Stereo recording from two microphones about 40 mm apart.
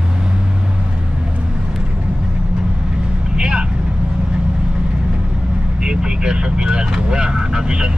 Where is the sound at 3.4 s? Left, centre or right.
Right.